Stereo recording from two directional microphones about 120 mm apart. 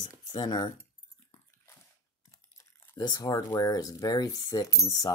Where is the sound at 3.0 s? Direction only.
30° left (ahead or behind).